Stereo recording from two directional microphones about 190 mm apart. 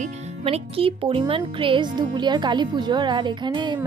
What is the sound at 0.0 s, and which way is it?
Speech, 30° right (ahead or behind).